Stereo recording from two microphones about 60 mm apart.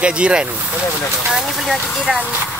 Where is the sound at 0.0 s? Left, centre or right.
Centre.